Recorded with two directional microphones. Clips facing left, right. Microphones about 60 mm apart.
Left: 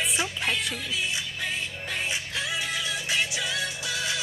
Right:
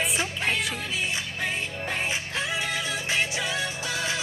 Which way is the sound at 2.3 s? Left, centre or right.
Right.